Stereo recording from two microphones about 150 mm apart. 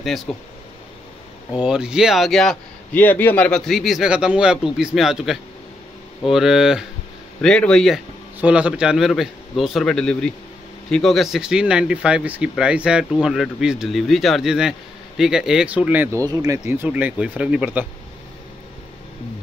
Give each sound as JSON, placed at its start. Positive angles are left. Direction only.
{"t": 0.3, "sound": "speech", "side_deg": 0}
{"t": 1.6, "sound": "speech", "side_deg": -5}
{"t": 3.0, "sound": "speech", "side_deg": 10}
{"t": 8.4, "sound": "speech", "side_deg": -10}
{"t": 16.8, "sound": "speech", "side_deg": -10}